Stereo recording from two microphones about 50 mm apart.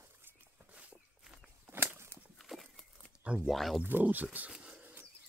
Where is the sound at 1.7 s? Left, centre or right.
Right.